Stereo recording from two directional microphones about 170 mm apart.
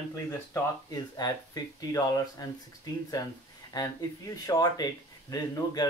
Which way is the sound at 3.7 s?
25° left (ahead or behind).